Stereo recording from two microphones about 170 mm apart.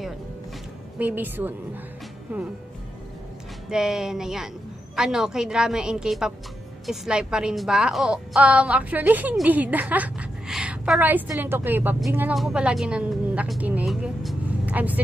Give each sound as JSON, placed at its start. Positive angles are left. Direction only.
{"t": 0.9, "sound": "a woman's voice", "side_deg": -10}
{"t": 3.7, "sound": "a woman's voice", "side_deg": -5}